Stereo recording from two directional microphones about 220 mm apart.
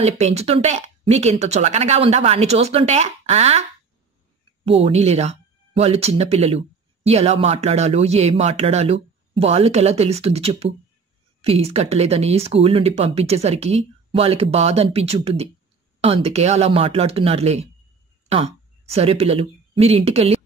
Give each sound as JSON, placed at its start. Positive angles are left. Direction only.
{"t": 0.0, "sound": "speech", "side_deg": -30}
{"t": 4.6, "sound": "speech", "side_deg": -25}